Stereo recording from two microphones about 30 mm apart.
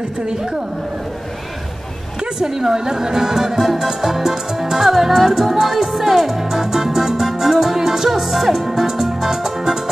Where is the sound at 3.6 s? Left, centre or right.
Centre.